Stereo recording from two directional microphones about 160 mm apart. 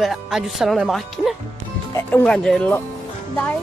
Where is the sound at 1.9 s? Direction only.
15° left (ahead or behind).